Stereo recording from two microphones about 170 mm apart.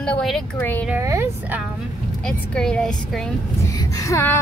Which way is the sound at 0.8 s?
15° right (ahead or behind).